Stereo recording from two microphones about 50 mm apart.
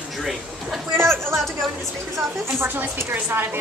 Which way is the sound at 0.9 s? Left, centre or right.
Right.